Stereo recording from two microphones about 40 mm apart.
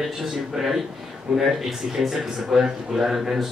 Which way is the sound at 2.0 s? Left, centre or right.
Centre.